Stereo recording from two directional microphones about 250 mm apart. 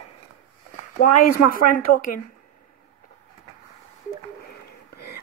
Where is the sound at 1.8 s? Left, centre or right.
Left.